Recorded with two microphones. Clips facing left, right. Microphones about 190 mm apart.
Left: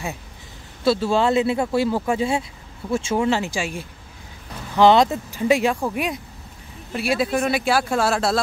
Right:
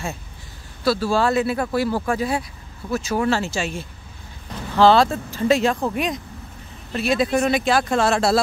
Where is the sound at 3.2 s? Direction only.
15° left (ahead or behind).